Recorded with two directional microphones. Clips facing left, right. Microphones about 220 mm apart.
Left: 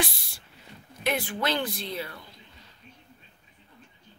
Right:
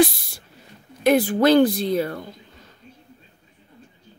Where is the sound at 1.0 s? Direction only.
40° right (ahead or behind).